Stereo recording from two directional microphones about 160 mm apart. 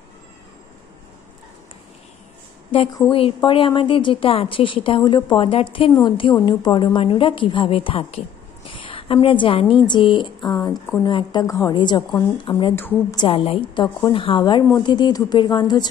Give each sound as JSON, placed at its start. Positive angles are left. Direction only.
{"t": 3.1, "sound": "a woman's voice", "side_deg": 35}